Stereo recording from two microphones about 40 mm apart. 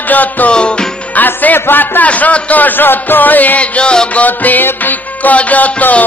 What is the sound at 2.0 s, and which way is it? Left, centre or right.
Music, left.